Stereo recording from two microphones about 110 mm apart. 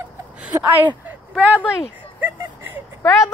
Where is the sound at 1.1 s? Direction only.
15° right (ahead or behind).